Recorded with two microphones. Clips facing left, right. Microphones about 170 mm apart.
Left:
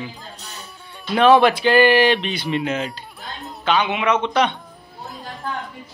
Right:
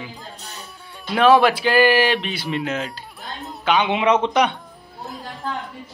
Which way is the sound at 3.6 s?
15° right (ahead or behind).